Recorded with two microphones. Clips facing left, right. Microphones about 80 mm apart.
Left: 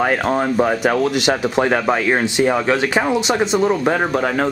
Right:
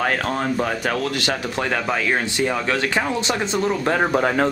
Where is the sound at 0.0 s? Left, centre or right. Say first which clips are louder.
Left 5 dB; centre.